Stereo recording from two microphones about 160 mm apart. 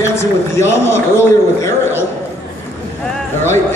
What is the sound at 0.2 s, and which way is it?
A man's voice, 15° left (ahead or behind).